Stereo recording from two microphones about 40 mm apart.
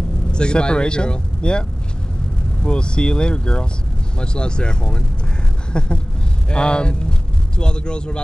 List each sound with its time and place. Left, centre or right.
0.3 s speech: left
5.7 s a sound: left
6.5 s speech: left